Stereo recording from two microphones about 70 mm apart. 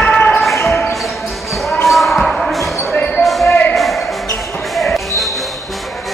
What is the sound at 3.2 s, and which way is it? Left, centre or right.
Basketball bounce, centre.